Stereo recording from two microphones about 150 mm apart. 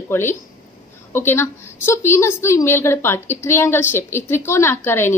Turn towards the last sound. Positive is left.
turn(degrees=15)  # may be behind; listen again after turning